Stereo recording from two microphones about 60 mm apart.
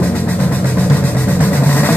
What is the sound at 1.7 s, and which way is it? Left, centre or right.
Vehicle, left.